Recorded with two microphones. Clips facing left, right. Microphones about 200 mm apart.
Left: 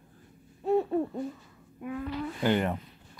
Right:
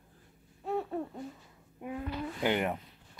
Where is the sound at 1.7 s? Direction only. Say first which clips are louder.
Left 3 dB; 25° right (ahead or behind).